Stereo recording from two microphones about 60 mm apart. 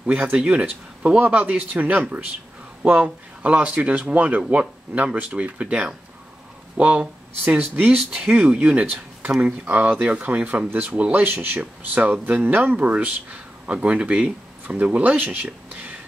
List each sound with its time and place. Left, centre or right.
0.0 s speech: right
7.9 s speech: centre; by 16.0 s right